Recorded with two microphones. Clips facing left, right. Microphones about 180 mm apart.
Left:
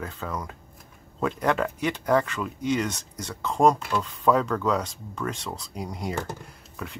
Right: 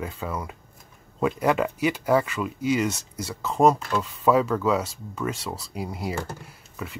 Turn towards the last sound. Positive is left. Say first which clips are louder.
# right 1 dB
turn(degrees=-5)  # may be behind; listen again after turning